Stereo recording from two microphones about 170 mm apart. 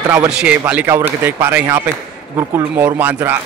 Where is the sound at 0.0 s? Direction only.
15° right (ahead or behind).